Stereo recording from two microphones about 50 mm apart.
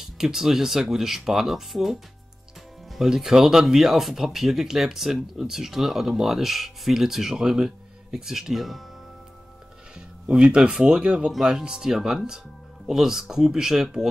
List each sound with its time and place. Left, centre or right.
0.0 s speech: centre
9.9 s speech: centre